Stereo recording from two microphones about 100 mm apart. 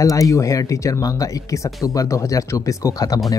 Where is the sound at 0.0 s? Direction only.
35° left (ahead or behind).